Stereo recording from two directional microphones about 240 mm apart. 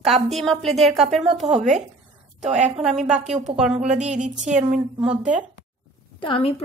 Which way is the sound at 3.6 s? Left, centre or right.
Centre.